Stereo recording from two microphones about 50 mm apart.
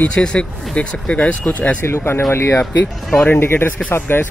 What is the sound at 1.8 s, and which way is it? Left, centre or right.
Speech, left.